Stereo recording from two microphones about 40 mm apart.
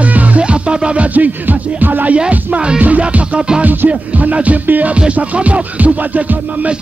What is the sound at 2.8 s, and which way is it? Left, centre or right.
Music, right.